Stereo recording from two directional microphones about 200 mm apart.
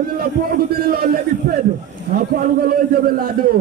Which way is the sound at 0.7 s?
50° right (ahead or behind).